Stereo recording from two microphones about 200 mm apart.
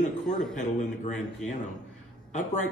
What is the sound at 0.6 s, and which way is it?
A man's voice, 35° left (ahead or behind).